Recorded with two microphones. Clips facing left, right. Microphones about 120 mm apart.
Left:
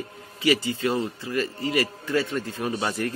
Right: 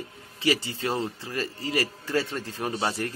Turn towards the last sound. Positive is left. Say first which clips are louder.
# left 2 dB
turn(degrees=-30)  # may be behind; listen again after turning